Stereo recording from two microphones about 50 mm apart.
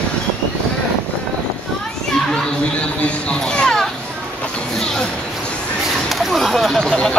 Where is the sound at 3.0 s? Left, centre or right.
Left.